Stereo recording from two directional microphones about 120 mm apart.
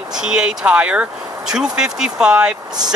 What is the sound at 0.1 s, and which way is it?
Speech, 5° right (ahead or behind).